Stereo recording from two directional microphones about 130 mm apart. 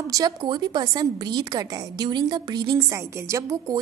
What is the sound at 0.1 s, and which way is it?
A woman's voice, 30° right (ahead or behind).